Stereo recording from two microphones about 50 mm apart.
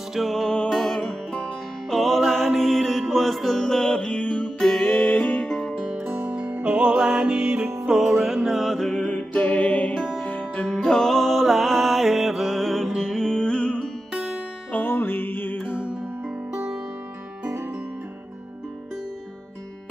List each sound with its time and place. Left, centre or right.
0.1 s music: centre
0.7 s music: left
1.0 s music: centre
4.8 s music: left
5.5 s music: centre
5.8 s music: centre
7.8 s music: centre
8.2 s mantra: centre
8.9 s music: centre
9.3 s music: left
10.8 s music: centre
13.1 s music: centre
14.7 s music: left
15.7 s music: right